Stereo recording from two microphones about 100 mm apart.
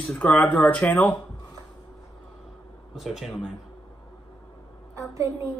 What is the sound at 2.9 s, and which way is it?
Speech, 5° right (ahead or behind).